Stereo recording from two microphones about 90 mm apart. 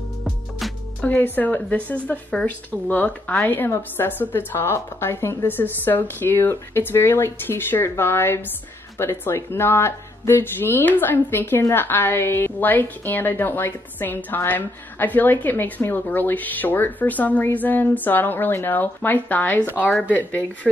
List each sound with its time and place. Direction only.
0.2 s music: centre (ahead or behind)
1.0 s speech: 20° left (ahead or behind)